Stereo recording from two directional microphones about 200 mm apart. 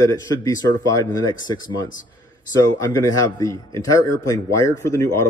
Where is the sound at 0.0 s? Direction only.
15° left (ahead or behind).